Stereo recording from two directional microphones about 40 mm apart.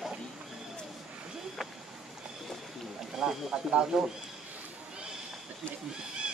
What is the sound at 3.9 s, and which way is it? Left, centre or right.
Speech, centre.